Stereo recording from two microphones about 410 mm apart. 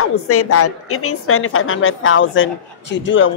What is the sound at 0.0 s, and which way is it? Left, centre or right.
A woman's voice, left.